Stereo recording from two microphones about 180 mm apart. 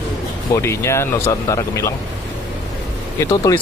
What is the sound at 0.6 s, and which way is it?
Speech, 15° left (ahead or behind).